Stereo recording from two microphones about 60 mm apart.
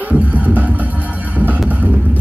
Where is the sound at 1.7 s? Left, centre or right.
Right.